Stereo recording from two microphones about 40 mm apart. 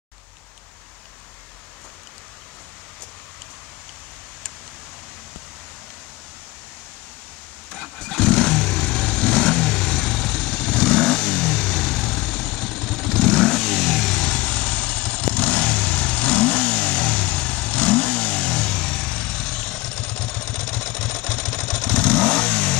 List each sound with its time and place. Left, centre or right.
7.7 s vehicle: centre
14.3 s vehicle: left